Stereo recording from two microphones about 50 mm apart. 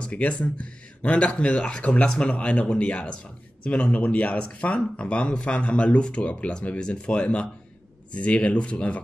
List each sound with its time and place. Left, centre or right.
0.0 s speech: left